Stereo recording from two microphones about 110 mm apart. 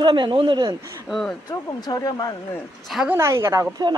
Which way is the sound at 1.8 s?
35° left (ahead or behind).